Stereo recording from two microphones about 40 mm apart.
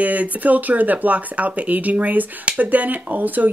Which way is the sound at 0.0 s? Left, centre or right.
Right.